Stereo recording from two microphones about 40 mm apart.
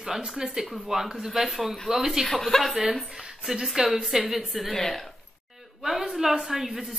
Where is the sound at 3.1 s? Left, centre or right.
Centre.